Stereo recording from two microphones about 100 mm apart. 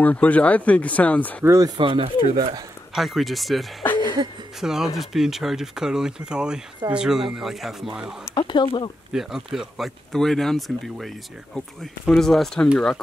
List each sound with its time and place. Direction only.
0.0 s speech: 15° left (ahead or behind)
1.4 s speech: 30° right (ahead or behind)
1.8 s speech: 60° right (ahead or behind)
2.2 s speech: 70° right (ahead or behind)
2.9 s speech: centre (ahead or behind)
8.4 s speech: 50° left (ahead or behind)
9.1 s speech: 5° right (ahead or behind); by 13.0 s 15° left (ahead or behind)